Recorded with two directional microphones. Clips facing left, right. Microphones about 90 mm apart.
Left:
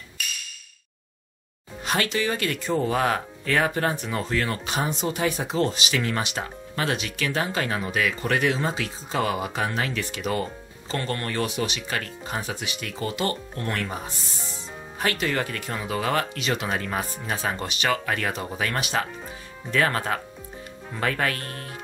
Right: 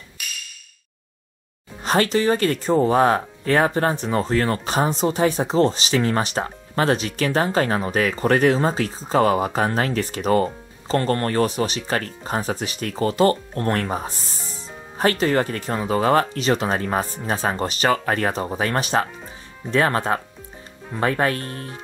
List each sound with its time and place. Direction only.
1.8 s speech: 35° right (ahead or behind)